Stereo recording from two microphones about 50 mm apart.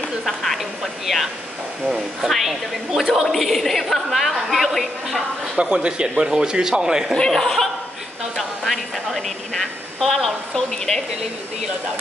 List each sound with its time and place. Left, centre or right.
0.2 s a woman's voice: centre
5.6 s a man's voice: centre
7.2 s a woman's voice: centre